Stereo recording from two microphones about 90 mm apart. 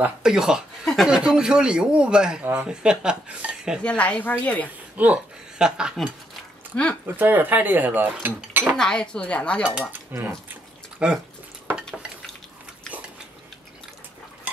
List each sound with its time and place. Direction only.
0.2 s speech: 5° right (ahead or behind)
3.8 s dishes: 15° left (ahead or behind)
4.9 s speech: 15° right (ahead or behind)
6.7 s speech: 10° left (ahead or behind)
7.1 s speech: 20° right (ahead or behind)
8.7 s dishes: 10° left (ahead or behind)
10.1 s speech: 20° right (ahead or behind)
11.0 s speech: 10° right (ahead or behind)